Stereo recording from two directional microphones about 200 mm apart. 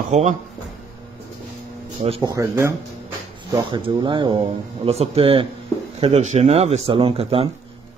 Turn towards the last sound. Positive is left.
turn(degrees=-30)  # may be behind; listen again after turning